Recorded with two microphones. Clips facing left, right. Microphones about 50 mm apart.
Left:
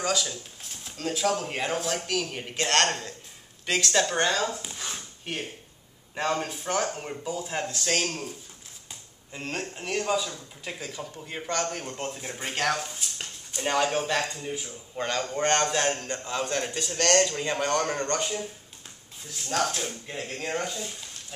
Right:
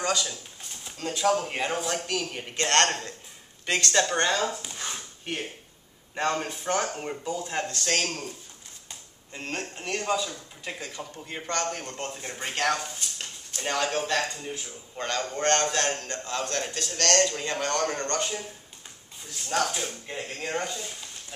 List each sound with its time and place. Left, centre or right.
0.0 s a man's voice: centre
4.7 s dog: centre
6.1 s a man's voice: centre
7.2 s a man's voice: centre
9.3 s a man's voice: centre
19.5 s a man's voice: centre